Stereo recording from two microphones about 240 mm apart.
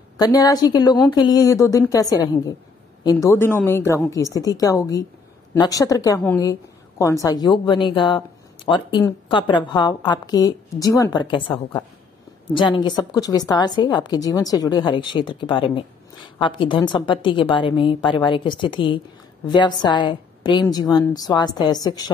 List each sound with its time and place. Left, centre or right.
0.2 s a woman's voice: centre
12.5 s a woman's voice: centre